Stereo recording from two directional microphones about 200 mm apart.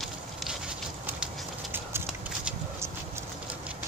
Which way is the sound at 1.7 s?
10° right (ahead or behind).